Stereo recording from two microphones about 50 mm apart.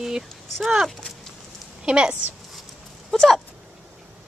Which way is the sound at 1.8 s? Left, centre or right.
Centre.